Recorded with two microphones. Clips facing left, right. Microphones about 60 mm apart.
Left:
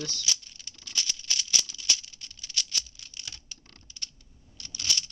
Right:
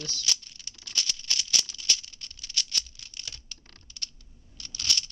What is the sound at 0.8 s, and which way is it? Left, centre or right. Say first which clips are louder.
Rattle: right 1 dB; centre.